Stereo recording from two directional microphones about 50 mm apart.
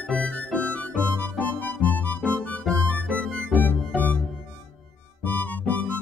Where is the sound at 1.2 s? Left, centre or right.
Left.